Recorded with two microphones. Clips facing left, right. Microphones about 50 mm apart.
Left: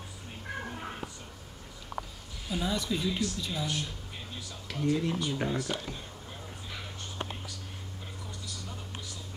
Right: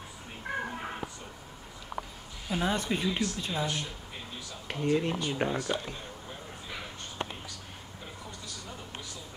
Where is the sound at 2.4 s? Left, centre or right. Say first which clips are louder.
Right 2 dB; right.